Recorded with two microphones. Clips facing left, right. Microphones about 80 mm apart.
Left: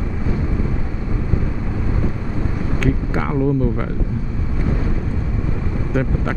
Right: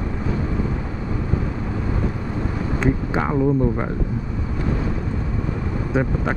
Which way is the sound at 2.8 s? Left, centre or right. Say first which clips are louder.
Right 1 dB; right.